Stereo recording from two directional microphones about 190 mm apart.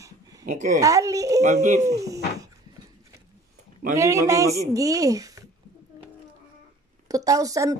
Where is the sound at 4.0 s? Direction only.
15° right (ahead or behind).